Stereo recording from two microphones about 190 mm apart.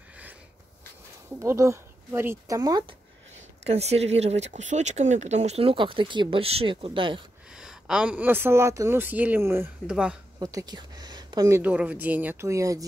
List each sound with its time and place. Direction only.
1.4 s speech: 15° right (ahead or behind)
3.6 s speech: 35° right (ahead or behind)
7.5 s speech: 5° right (ahead or behind)
10.4 s speech: 20° right (ahead or behind)